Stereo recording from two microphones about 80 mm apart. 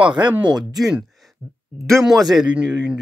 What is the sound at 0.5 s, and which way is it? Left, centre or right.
Speech, centre.